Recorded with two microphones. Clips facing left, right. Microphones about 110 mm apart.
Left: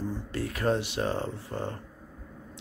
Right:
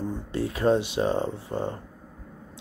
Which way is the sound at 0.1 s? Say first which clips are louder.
Right 4 dB; 20° right (ahead or behind).